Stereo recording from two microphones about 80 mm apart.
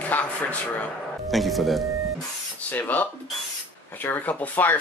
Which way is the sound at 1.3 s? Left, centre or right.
Centre.